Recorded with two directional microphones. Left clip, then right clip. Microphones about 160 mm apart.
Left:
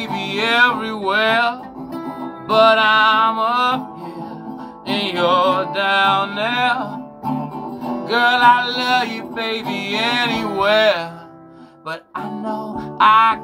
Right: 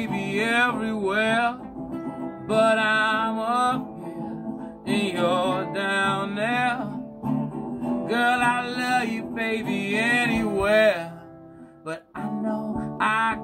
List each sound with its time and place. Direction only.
0.0 s music: 15° right (ahead or behind)
4.8 s music: 20° right (ahead or behind)
8.0 s music: 15° right (ahead or behind)
12.4 s music: 20° right (ahead or behind)